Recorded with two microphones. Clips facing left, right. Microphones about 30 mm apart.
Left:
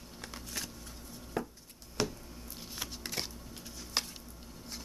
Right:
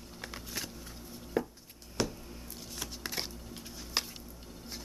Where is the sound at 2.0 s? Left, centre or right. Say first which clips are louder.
Right 1 dB; centre.